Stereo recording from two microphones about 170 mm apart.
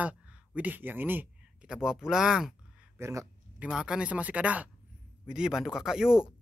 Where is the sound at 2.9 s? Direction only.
15° right (ahead or behind).